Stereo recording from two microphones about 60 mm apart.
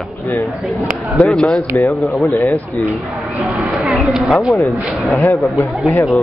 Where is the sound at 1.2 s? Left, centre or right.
Centre.